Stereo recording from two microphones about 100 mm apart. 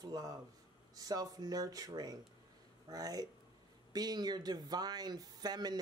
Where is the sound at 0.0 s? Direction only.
40° right (ahead or behind).